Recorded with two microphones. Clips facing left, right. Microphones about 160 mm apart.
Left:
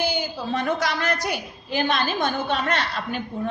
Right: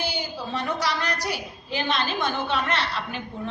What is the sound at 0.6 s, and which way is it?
Speech, 50° left (ahead or behind).